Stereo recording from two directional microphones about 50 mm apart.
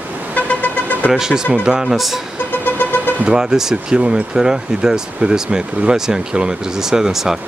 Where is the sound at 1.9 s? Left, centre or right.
Centre.